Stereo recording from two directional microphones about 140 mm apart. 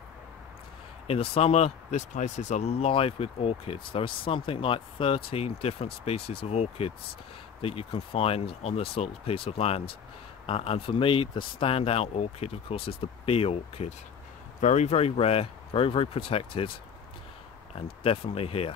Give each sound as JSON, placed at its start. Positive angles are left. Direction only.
{"t": 1.3, "sound": "speech", "side_deg": 50}
{"t": 14.6, "sound": "speech", "side_deg": 55}
{"t": 18.0, "sound": "speech", "side_deg": 45}